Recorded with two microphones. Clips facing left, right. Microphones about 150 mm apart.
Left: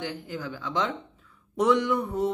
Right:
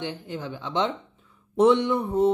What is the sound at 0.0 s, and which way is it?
Mantra, 25° right (ahead or behind).